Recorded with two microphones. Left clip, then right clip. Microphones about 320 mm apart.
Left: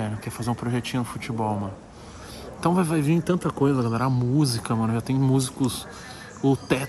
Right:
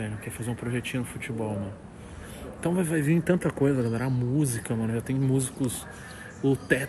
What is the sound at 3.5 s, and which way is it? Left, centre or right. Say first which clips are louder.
Speech: left 3 dB; left.